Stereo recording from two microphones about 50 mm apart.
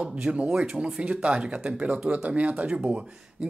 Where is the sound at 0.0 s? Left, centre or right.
Right.